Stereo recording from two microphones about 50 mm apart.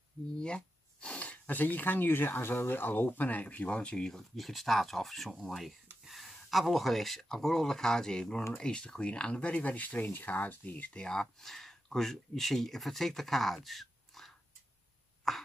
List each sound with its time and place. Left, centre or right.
0.4 s a sound: centre
1.5 s speech: left; by 4.3 s centre
4.4 s speech: centre; by 11.1 s left
11.1 s speech: centre
15.3 s throat clearing: centre